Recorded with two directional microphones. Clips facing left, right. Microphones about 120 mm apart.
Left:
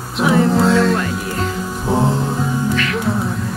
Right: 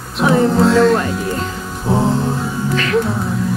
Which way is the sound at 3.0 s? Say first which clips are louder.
Even; centre (ahead or behind).